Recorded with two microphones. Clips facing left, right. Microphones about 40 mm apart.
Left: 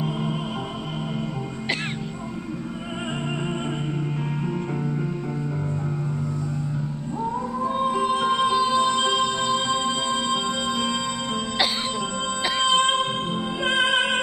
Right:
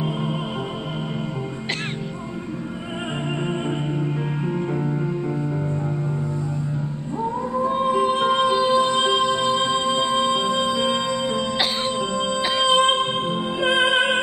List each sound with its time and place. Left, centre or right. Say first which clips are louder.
7.5 s music: right 4 dB; centre
12.6 s music: right 2 dB; right